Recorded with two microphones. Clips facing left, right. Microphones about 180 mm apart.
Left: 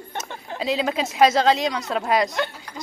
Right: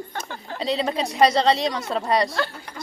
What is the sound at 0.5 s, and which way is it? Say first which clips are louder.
A woman's voice: left 1 dB; 5° left (ahead or behind).